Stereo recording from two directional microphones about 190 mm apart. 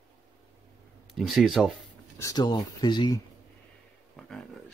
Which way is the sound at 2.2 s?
20° left (ahead or behind).